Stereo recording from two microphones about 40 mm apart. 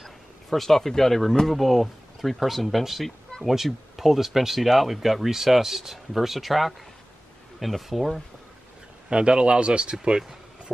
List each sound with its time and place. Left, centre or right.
0.0 s speech: centre
9.1 s speech: right
10.0 s a sound: right